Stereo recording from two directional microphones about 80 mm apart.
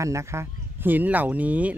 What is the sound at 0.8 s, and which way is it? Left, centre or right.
Speech, right.